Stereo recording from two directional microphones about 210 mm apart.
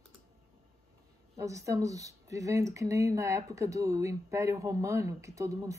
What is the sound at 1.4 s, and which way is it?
Speech, 15° right (ahead or behind).